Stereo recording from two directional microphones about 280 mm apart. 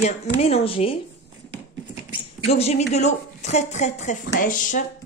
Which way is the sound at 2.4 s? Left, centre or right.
Left.